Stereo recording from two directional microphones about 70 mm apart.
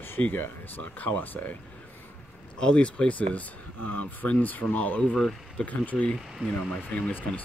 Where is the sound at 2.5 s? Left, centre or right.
Centre.